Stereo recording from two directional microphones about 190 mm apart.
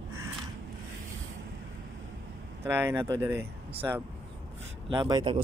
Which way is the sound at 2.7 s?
10° right (ahead or behind).